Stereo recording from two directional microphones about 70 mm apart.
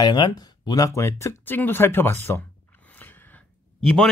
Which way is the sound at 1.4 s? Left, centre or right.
Left.